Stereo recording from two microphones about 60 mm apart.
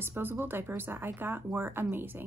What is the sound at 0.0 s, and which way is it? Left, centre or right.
A woman's voice, right.